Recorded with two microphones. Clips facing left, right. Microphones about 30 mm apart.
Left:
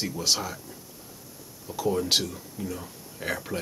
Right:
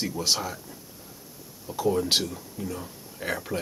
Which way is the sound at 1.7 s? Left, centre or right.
Centre.